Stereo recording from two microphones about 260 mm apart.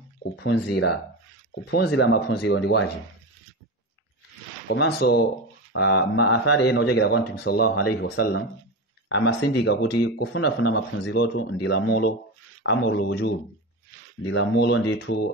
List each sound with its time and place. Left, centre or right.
0.4 s speech: left
4.6 s speech: left